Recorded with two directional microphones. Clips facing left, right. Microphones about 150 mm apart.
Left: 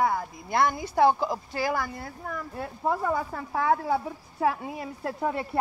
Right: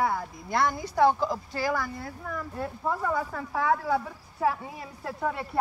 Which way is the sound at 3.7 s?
35° left (ahead or behind).